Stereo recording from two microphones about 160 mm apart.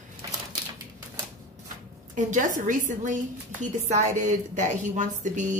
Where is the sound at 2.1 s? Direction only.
55° right (ahead or behind).